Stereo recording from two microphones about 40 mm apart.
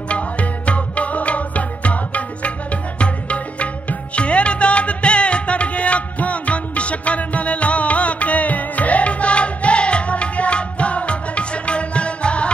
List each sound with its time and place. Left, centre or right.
0.1 s music: left